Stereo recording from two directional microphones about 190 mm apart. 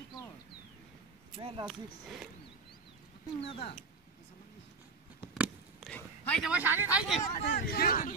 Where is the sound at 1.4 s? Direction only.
30° right (ahead or behind).